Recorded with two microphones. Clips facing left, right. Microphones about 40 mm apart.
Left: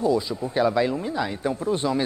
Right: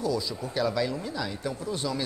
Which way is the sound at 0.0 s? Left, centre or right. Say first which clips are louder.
Left 6 dB; left.